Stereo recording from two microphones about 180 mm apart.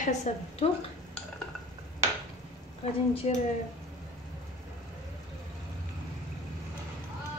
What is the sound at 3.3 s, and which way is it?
Speech, 35° left (ahead or behind).